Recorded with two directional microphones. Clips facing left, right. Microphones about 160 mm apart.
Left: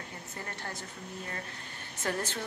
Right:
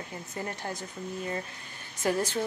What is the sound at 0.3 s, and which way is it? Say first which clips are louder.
Speech: right 6 dB; 15° right (ahead or behind).